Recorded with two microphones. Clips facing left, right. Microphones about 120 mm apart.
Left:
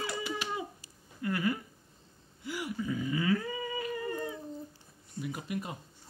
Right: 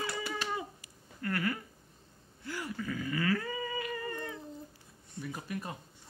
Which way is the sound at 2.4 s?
15° left (ahead or behind).